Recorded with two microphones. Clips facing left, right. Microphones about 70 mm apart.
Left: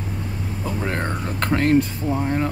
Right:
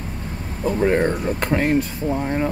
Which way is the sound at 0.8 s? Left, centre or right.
Centre.